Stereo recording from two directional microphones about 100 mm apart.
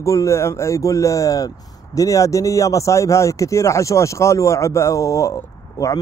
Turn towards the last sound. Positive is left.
turn(degrees=35)  # may be behind; listen again after turning